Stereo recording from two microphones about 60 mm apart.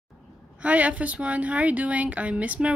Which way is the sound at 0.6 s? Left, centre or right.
Right.